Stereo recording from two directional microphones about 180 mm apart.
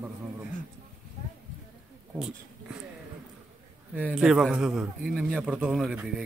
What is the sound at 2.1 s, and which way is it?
Speech, 5° right (ahead or behind).